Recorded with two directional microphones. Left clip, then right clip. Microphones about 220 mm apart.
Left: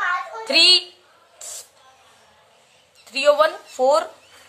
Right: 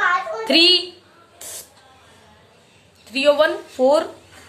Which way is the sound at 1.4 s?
20° left (ahead or behind).